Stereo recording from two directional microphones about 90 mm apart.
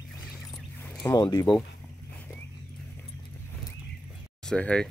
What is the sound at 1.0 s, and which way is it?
Speech, 50° left (ahead or behind).